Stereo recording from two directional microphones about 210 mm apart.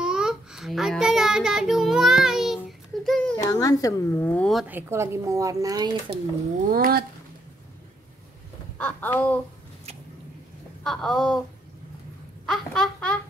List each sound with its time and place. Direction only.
0.0 s child singing: 5° right (ahead or behind)
3.4 s a woman's voice: 15° left (ahead or behind); by 6.1 s 20° right (ahead or behind)
6.7 s speech: 45° right (ahead or behind)
8.7 s speech: 10° left (ahead or behind)
10.8 s speech: centre (ahead or behind)
12.4 s a sound: centre (ahead or behind)